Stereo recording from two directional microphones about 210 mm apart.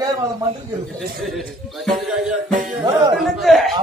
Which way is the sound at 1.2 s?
Centre (ahead or behind).